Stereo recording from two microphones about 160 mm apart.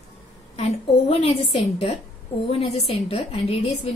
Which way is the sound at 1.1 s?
40° left (ahead or behind).